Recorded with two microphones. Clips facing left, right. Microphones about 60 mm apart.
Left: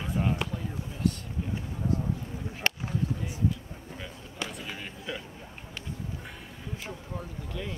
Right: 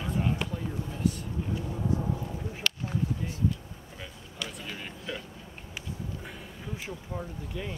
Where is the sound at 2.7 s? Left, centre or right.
Left.